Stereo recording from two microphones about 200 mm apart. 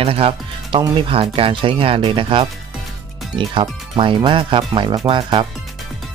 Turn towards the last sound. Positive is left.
turn(degrees=-25)  # may be behind; listen again after turning